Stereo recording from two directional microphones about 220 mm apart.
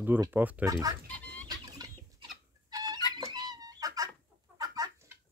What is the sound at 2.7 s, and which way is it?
Fowl, 15° right (ahead or behind).